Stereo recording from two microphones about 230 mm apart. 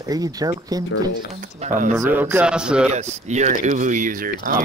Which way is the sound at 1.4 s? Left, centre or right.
Right.